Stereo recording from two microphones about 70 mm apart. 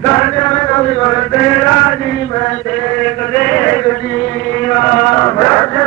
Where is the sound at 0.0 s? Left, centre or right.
Centre.